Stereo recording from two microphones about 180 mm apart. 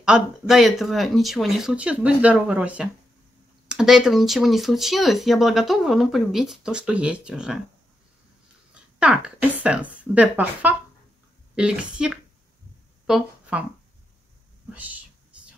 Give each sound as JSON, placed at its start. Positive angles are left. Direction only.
{"t": 0.0, "sound": "speech", "side_deg": -5}
{"t": 9.0, "sound": "speech", "side_deg": -5}
{"t": 14.7, "sound": "speech", "side_deg": -10}
{"t": 15.3, "sound": "a sound", "side_deg": -5}